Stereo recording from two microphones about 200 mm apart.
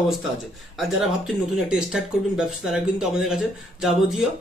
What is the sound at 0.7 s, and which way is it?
Speech, centre (ahead or behind).